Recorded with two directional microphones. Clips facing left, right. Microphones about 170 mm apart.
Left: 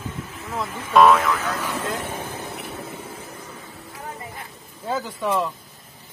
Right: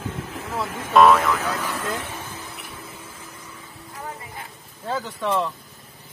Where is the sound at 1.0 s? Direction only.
Centre (ahead or behind).